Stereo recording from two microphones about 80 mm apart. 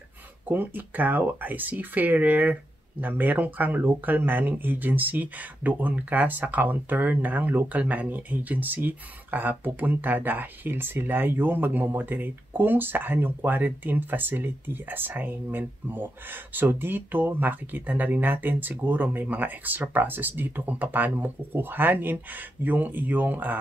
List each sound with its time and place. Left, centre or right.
0.5 s speech: right